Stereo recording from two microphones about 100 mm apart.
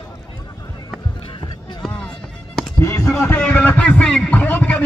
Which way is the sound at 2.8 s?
30° left (ahead or behind).